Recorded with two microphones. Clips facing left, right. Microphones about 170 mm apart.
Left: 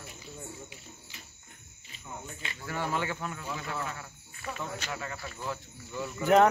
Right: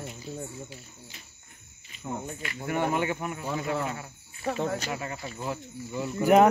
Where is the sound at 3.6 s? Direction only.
40° right (ahead or behind).